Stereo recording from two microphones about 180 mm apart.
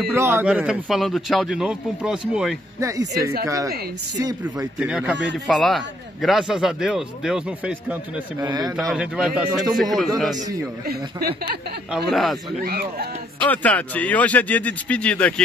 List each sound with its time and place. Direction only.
0.1 s speech: 15° right (ahead or behind)
2.8 s a man's voice: 20° right (ahead or behind)
4.7 s speech: 5° right (ahead or behind)
8.5 s speech: 20° right (ahead or behind)
8.7 s speech: 5° right (ahead or behind)
10.9 s speech: 60° right (ahead or behind)
12.1 s speech: centre (ahead or behind)
12.6 s speech: 60° right (ahead or behind)
13.5 s speech: 10° left (ahead or behind)